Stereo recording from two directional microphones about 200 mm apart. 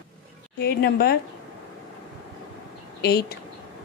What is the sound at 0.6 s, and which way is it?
Speech, 50° left (ahead or behind).